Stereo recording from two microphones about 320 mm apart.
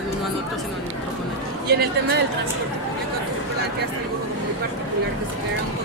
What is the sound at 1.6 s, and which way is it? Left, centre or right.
Speech, right.